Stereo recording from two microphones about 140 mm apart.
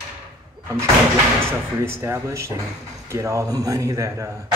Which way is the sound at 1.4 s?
20° right (ahead or behind).